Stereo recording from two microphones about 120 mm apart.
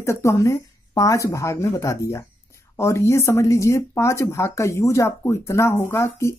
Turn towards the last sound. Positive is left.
turn(degrees=20)  # may be behind; listen again after turning